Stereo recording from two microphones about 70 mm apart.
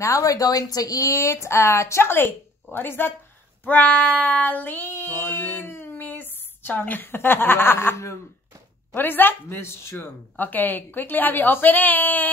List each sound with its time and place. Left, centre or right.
0.0 s speech: left
3.6 s child singing: left
8.9 s speech: left
10.3 s a woman's voice: left